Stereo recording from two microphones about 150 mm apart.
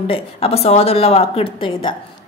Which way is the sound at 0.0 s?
40° left (ahead or behind).